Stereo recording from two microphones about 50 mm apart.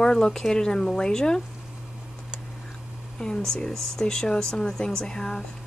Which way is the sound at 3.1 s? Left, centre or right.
Centre.